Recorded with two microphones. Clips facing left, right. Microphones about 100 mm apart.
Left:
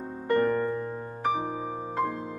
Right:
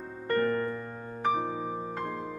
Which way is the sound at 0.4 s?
15° left (ahead or behind).